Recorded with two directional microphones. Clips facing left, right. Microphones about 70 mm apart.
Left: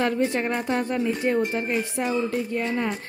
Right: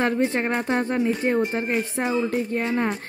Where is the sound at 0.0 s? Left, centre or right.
Right.